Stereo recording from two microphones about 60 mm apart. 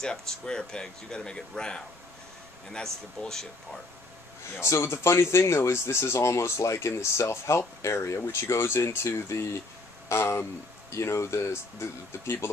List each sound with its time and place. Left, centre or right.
0.0 s speech: centre
4.6 s speech: left